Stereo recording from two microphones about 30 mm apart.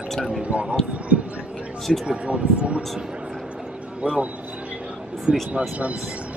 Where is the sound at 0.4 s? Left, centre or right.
Right.